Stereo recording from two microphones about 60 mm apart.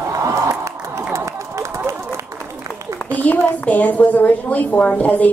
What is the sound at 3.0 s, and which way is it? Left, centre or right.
A woman's voice, left.